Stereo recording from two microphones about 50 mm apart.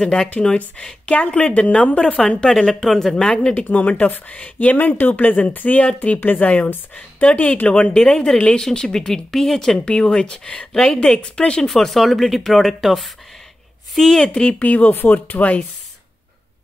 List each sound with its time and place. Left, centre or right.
0.0 s speech: centre
1.1 s speech: left
2.6 s speech: centre
3.2 s speech: left
9.8 s speech: centre
10.7 s speech: centre
11.7 s speech: centre
13.9 s speech: centre
14.6 s speech: left